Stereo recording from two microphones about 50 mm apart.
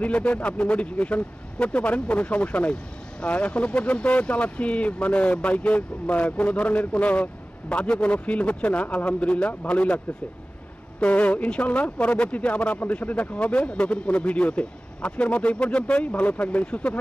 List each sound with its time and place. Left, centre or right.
0.0 s speech: left
11.0 s speech: left